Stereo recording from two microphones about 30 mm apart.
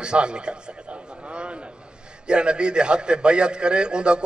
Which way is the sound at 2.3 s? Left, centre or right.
Right.